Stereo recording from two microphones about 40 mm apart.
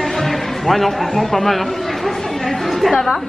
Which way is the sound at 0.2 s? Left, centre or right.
Centre.